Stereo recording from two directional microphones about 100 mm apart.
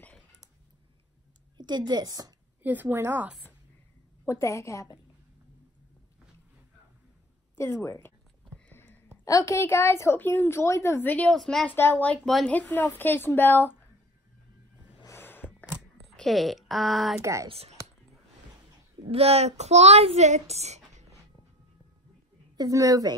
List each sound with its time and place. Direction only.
1.6 s a woman's voice: 45° right (ahead or behind)
2.6 s a woman's voice: 20° right (ahead or behind)
4.3 s a woman's voice: 30° left (ahead or behind)
7.5 s a woman's voice: 25° left (ahead or behind)
8.7 s a sound: 20° left (ahead or behind)
9.2 s a woman's voice: 35° left (ahead or behind); by 11.3 s 15° left (ahead or behind)
11.3 s speech: 5° left (ahead or behind)
11.6 s a woman's voice: 20° left (ahead or behind)
15.0 s a sound: 20° left (ahead or behind)
16.2 s speech: centre (ahead or behind)
17.2 s a woman's voice: 30° right (ahead or behind)
17.5 s a child's voice: 90° right
19.0 s a child's voice: 80° right
22.6 s a woman's voice: 35° right (ahead or behind)